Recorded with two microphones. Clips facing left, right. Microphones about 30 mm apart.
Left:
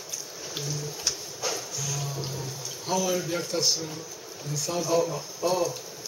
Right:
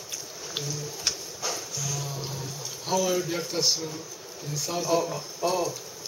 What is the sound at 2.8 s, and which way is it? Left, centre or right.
Speech, centre.